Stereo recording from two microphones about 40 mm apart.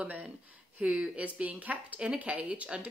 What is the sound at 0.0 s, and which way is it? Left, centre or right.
Speech, right.